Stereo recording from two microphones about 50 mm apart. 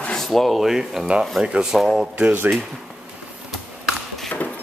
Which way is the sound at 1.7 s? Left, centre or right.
Centre.